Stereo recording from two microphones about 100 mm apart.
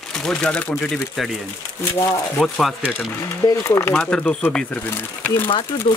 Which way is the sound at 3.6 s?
25° left (ahead or behind).